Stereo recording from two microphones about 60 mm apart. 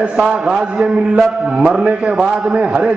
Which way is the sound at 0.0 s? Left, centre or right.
Centre.